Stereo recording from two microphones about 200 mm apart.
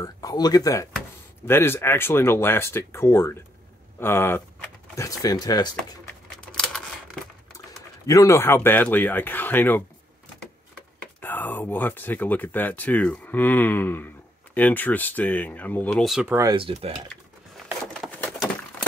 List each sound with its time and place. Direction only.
0.0 s speech: 20° left (ahead or behind)
8.1 s speech: 15° left (ahead or behind)
11.1 s speech: 10° left (ahead or behind)
16.3 s speech: 20° right (ahead or behind)
18.1 s a sound: 5° left (ahead or behind)